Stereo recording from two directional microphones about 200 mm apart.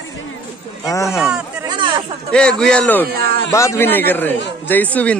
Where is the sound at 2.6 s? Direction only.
5° left (ahead or behind).